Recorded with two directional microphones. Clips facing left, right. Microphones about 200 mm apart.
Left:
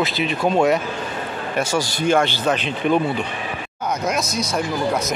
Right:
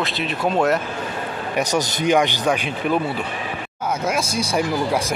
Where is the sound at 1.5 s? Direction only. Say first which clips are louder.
Right 1 dB; 15° right (ahead or behind).